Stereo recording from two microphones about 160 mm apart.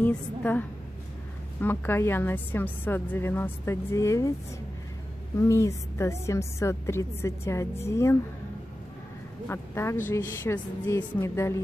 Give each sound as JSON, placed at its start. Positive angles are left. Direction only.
{"t": 0.0, "sound": "a woman's voice", "side_deg": 10}
{"t": 5.4, "sound": "a woman's voice", "side_deg": 20}
{"t": 9.5, "sound": "a woman's voice", "side_deg": 15}